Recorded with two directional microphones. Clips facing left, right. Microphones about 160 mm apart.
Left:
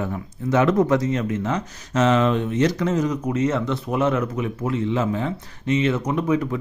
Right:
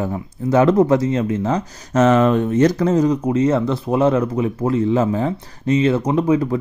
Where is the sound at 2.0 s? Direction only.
45° right (ahead or behind).